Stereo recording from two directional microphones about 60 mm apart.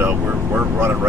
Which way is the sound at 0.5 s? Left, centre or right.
Right.